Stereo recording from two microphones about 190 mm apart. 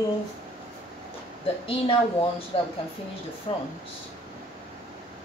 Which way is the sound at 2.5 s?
30° left (ahead or behind).